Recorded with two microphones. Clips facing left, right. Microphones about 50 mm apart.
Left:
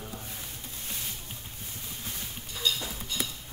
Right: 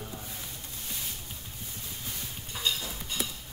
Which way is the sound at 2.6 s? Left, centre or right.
Right.